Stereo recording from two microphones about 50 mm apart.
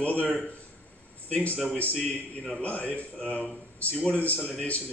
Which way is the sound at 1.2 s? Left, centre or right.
Left.